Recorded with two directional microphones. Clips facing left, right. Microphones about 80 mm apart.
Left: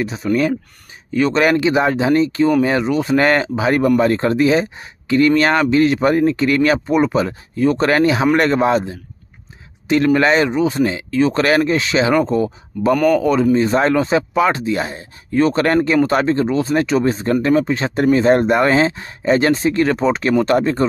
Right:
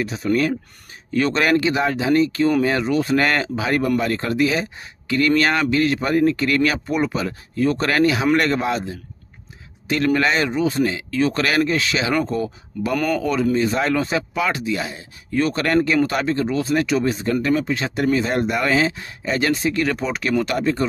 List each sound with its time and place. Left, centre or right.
0.0 s speech: left
12.9 s speech: centre
13.2 s speech: left